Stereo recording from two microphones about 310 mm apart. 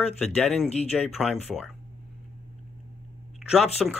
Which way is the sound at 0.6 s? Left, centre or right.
Left.